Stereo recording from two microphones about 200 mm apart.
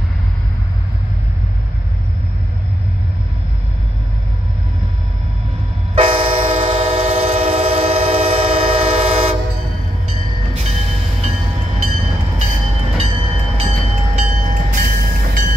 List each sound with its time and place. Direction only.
5.9 s train: 30° right (ahead or behind); by 15.4 s 45° right (ahead or behind)